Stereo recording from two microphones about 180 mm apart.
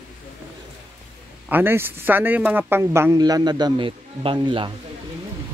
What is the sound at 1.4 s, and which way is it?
Speech, 10° right (ahead or behind).